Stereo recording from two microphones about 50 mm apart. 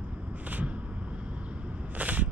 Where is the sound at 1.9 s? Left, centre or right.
Right.